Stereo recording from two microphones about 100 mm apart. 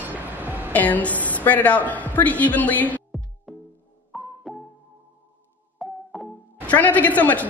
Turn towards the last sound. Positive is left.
turn(degrees=15)  # may be behind; listen again after turning